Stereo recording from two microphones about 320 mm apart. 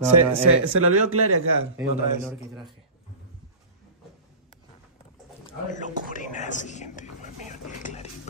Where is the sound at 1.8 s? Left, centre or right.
Centre.